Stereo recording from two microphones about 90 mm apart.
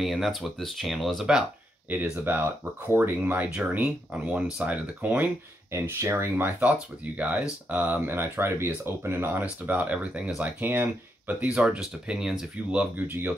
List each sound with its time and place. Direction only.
0.0 s speech: centre (ahead or behind)
2.2 s speech: 25° right (ahead or behind)
5.7 s speech: 30° right (ahead or behind); by 12.8 s 5° right (ahead or behind)
12.9 s speech: 20° right (ahead or behind)